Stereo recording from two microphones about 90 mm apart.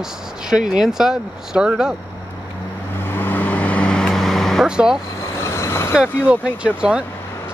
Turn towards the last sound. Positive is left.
turn(degrees=-10)  # may be behind; listen again after turning